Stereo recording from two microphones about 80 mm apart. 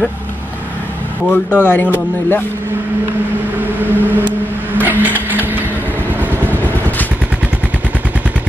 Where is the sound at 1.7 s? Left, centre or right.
Left.